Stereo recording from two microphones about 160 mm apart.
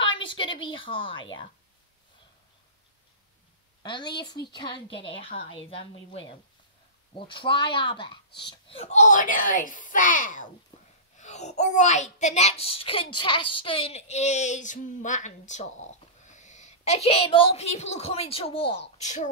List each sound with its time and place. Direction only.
0.0 s a woman's voice: 30° left (ahead or behind)
3.8 s a woman's voice: 30° left (ahead or behind)
8.3 s speech: 90° left
8.6 s a child's voice: 40° left (ahead or behind)